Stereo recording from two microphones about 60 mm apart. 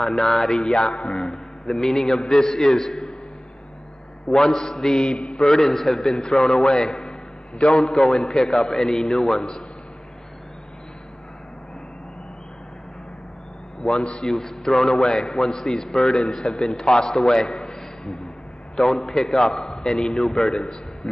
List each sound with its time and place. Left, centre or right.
0.0 s a man's voice: centre
4.3 s a man's voice: centre
13.8 s a man's voice: centre